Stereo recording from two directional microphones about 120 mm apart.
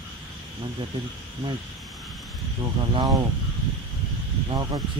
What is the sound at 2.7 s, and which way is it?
Speech, 40° right (ahead or behind).